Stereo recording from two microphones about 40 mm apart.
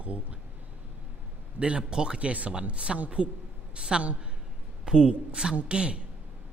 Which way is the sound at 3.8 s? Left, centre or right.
Right.